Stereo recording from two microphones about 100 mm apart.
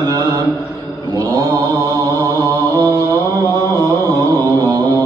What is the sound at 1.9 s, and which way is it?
Mantra, 40° right (ahead or behind).